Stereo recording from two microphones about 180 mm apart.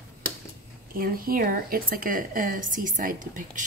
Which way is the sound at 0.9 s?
55° right (ahead or behind).